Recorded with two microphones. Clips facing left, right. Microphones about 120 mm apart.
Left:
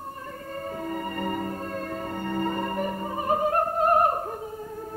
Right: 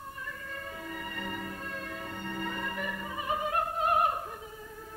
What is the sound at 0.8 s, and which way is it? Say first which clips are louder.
Music: left 10 dB; 45° left (ahead or behind).